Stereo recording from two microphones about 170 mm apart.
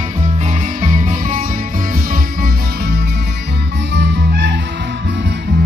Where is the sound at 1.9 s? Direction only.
60° right (ahead or behind).